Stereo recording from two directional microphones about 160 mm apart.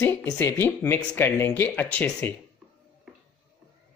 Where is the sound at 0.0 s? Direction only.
15° left (ahead or behind).